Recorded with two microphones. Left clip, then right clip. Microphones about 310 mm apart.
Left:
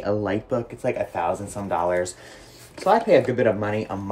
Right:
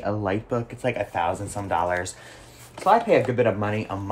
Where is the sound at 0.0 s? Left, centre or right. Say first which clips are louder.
Left 2 dB; centre.